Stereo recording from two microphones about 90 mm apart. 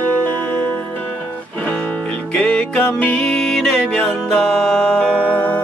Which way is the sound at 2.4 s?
10° left (ahead or behind).